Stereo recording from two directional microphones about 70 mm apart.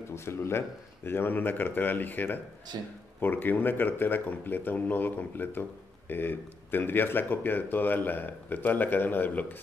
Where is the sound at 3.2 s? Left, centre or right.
Left.